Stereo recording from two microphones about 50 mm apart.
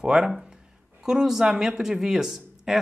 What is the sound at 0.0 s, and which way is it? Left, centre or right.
Speech, centre.